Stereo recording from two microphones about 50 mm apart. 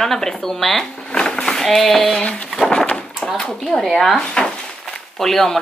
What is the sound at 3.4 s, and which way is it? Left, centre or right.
Speech, centre.